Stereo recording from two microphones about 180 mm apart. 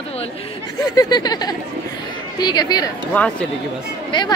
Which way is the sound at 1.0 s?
20° left (ahead or behind).